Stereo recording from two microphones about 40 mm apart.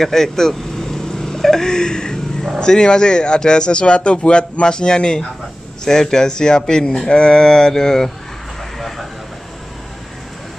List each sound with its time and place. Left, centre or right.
0.0 s speech: centre
8.7 s vehicle: centre